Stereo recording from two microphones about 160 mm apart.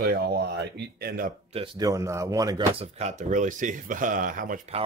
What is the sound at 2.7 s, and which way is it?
Speech, 40° right (ahead or behind).